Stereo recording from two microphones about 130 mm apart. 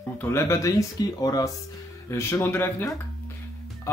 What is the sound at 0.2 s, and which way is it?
Speech, 20° left (ahead or behind).